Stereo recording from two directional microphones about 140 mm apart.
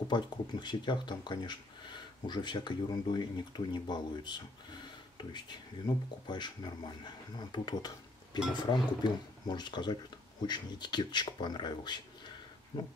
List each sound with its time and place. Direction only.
0.1 s speech: 30° left (ahead or behind)